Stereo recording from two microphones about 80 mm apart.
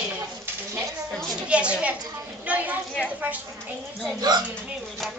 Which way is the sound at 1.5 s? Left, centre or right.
Centre.